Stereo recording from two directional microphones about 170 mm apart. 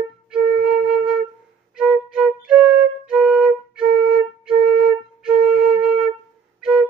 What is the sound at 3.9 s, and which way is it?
Flute, 30° right (ahead or behind).